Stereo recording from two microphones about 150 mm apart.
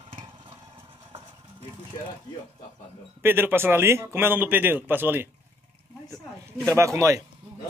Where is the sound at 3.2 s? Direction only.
15° right (ahead or behind).